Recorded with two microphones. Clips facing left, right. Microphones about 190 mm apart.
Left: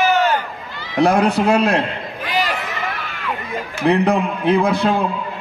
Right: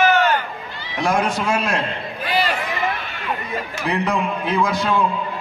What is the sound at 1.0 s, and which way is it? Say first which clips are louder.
Speech: left 6 dB; 65° left (ahead or behind).